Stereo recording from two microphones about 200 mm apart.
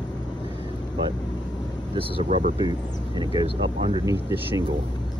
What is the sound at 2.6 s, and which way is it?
Speech, 20° right (ahead or behind).